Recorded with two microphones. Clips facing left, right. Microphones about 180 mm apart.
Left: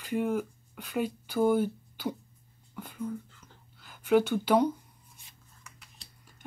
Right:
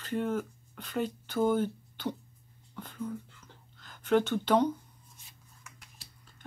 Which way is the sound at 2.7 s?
10° left (ahead or behind).